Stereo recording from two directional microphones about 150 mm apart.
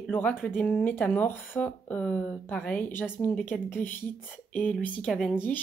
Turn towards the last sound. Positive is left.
turn(degrees=10)  # may be behind; listen again after turning